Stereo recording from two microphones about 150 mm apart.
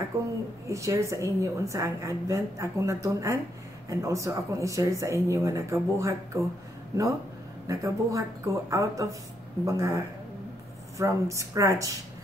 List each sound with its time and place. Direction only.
0.1 s a woman's voice: 20° right (ahead or behind)
7.6 s a woman's voice: 20° right (ahead or behind)